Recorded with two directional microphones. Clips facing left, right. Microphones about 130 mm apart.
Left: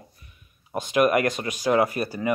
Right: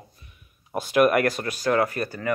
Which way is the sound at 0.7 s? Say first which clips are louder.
Right 1 dB; 5° right (ahead or behind).